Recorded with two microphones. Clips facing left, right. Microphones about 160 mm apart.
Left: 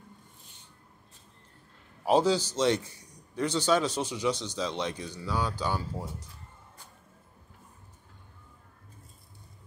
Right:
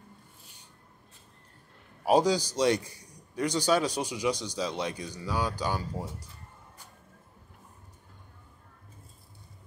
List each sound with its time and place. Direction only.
2.0 s a man's voice: 15° right (ahead or behind)